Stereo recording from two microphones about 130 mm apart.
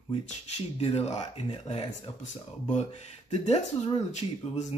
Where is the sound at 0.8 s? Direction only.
55° left (ahead or behind).